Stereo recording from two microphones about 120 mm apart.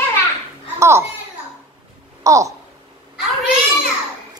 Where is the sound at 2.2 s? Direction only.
25° right (ahead or behind).